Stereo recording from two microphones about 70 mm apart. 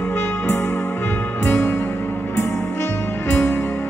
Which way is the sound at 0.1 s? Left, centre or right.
Left.